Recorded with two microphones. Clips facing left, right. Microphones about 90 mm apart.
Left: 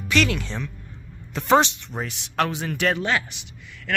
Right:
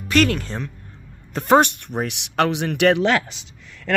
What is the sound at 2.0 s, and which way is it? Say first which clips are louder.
Speech: right 4 dB; 70° right (ahead or behind).